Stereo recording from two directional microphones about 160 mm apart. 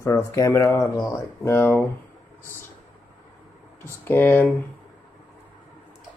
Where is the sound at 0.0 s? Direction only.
15° left (ahead or behind).